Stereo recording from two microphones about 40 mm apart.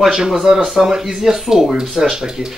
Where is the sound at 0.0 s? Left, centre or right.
Centre.